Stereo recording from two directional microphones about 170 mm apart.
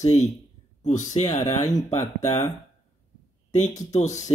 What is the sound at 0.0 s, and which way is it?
Speech, 40° left (ahead or behind).